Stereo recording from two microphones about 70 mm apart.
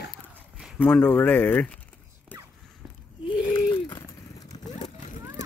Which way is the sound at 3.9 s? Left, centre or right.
Left.